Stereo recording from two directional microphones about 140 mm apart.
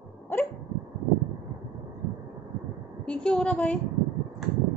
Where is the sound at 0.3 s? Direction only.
15° left (ahead or behind).